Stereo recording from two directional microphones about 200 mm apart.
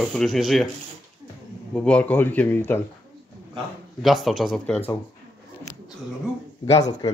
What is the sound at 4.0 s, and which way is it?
Speech, centre (ahead or behind).